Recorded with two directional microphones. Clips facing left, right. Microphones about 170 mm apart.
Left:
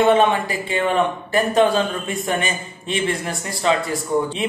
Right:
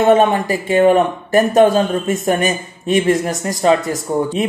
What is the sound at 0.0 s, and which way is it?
Speech, 45° right (ahead or behind).